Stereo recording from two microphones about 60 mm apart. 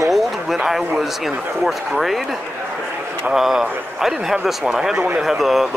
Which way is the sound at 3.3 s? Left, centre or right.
Centre.